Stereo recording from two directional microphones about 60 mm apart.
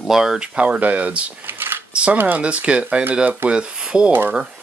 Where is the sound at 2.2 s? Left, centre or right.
Right.